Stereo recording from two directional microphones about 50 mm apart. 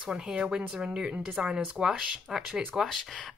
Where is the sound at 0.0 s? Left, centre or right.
Centre.